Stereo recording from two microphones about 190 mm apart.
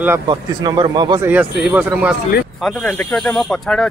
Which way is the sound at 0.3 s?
25° right (ahead or behind).